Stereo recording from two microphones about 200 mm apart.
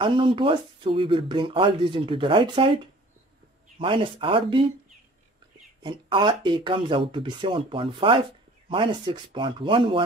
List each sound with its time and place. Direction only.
0.0 s speech: 25° right (ahead or behind)
5.8 s speech: 25° right (ahead or behind)